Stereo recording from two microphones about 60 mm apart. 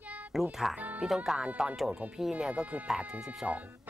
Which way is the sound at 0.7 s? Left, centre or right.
Right.